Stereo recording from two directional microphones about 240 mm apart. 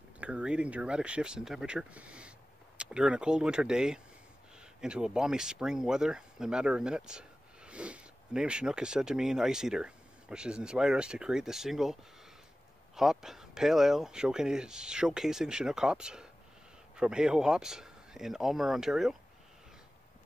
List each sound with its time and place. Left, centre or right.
0.2 s speech: centre